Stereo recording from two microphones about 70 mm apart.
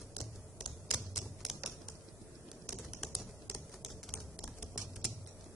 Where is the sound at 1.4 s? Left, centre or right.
Centre.